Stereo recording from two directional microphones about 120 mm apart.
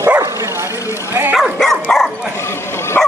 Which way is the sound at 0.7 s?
25° left (ahead or behind).